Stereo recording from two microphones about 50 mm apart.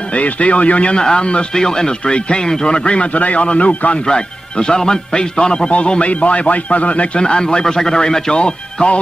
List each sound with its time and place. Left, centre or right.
0.1 s speech: left